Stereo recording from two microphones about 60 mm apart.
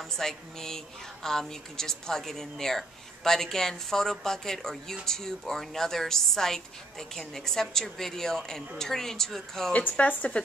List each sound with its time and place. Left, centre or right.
0.0 s a woman's voice: centre
9.8 s speech: left